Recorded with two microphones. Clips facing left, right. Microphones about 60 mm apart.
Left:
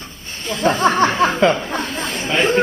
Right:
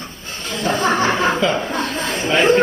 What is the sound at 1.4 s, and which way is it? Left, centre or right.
Speech, left.